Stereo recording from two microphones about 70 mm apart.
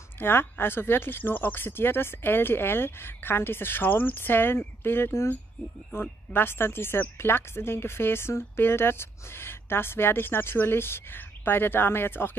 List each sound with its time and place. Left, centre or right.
0.2 s speech: left